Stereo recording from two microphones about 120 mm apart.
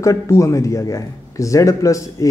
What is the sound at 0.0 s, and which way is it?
A man's voice, 25° left (ahead or behind).